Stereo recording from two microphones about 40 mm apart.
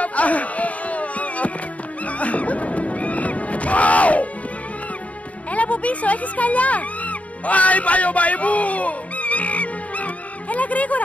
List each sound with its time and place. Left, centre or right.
0.0 s music: left
5.5 s music: left